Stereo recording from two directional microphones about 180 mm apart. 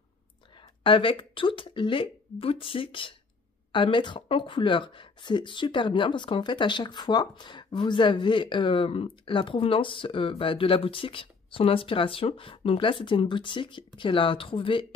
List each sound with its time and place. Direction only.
0.6 s speech: 30° left (ahead or behind)